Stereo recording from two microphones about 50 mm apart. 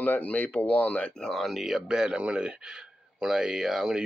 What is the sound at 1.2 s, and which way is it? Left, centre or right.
Speech, centre.